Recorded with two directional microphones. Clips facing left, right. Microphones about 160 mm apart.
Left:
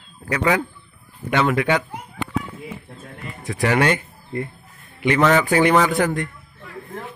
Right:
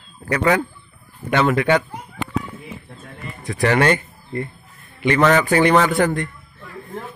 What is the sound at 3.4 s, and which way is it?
A man's voice, 10° left (ahead or behind).